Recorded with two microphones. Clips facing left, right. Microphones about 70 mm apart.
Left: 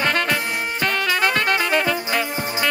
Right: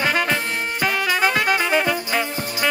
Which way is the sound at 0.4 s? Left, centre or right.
Centre.